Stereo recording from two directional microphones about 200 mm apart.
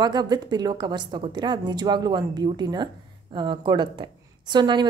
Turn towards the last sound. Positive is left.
turn(degrees=-20)  # may be behind; listen again after turning